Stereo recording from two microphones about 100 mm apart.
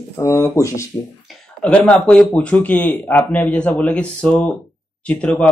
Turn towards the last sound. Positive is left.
turn(degrees=10)  # may be behind; listen again after turning